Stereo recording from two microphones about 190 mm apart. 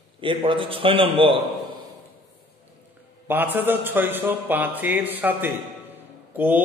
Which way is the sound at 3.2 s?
10° right (ahead or behind).